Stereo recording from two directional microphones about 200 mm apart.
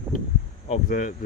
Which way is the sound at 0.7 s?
40° left (ahead or behind).